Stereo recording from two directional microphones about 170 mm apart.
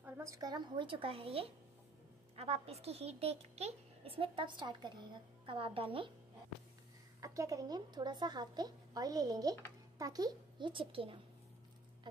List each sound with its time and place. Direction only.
0.0 s a woman's voice: 20° right (ahead or behind)
7.2 s a woman's voice: 20° right (ahead or behind)